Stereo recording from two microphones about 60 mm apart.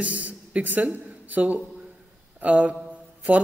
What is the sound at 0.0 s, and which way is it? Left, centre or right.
A woman's voice, right.